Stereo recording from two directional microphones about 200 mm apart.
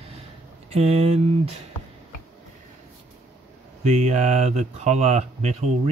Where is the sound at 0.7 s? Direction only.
30° right (ahead or behind).